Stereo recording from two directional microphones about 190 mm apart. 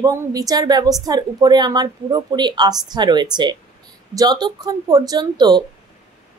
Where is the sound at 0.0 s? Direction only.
20° right (ahead or behind).